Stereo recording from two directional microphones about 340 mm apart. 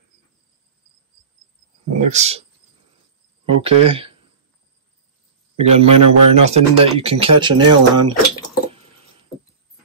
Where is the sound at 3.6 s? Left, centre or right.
Centre.